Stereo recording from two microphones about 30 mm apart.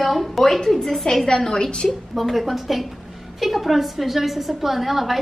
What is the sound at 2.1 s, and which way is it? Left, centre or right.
A woman's voice, centre.